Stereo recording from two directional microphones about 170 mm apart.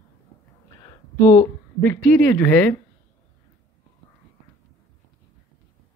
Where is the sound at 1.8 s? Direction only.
15° left (ahead or behind).